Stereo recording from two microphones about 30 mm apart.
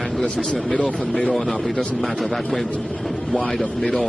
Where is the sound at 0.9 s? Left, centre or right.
Left.